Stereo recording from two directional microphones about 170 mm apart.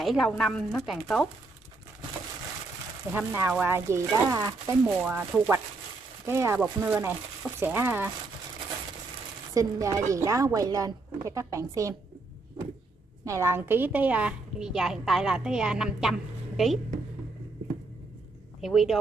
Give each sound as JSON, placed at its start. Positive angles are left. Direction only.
{"t": 0.0, "sound": "a woman's voice", "side_deg": 0}
{"t": 3.1, "sound": "speech", "side_deg": -10}
{"t": 6.2, "sound": "speech", "side_deg": -15}
{"t": 9.5, "sound": "a woman's voice", "side_deg": -20}
{"t": 13.2, "sound": "a woman's voice", "side_deg": -15}
{"t": 18.6, "sound": "a woman's voice", "side_deg": 0}